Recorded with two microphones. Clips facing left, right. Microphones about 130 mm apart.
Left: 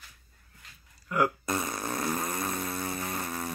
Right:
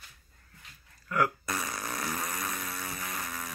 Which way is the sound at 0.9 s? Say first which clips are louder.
Left 2 dB; 20° left (ahead or behind).